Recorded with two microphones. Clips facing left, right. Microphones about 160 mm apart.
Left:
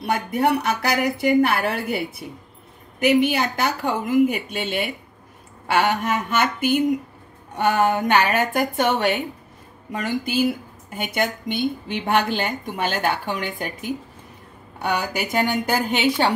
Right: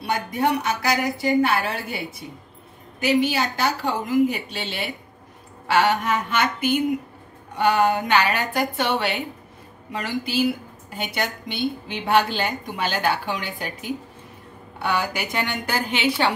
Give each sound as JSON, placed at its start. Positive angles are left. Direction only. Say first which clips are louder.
{"t": 0.4, "sound": "a woman's voice", "louder": "left 2 dB", "side_deg": 60}
{"t": 3.0, "sound": "a woman's voice", "louder": "left 3 dB", "side_deg": 55}